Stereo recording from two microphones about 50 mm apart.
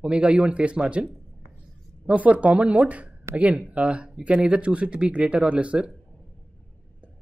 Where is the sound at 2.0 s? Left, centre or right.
Right.